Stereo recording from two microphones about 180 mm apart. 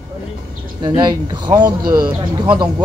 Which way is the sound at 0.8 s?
25° right (ahead or behind).